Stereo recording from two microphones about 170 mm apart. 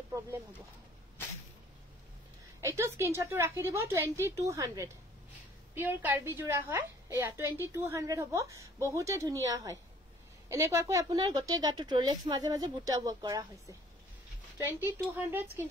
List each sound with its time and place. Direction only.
2.6 s a woman's voice: 15° right (ahead or behind)
15.1 s a woman's voice: 10° right (ahead or behind)